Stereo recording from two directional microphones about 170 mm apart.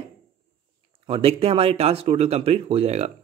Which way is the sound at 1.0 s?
35° right (ahead or behind).